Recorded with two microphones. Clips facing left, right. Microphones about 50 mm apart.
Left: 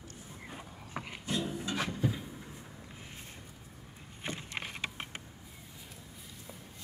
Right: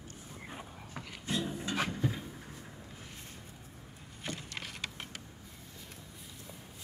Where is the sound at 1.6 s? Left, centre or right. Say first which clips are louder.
Right 1 dB; right.